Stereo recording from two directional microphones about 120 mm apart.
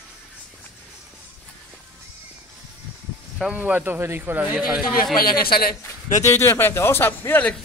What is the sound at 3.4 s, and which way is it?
Speech, 10° right (ahead or behind).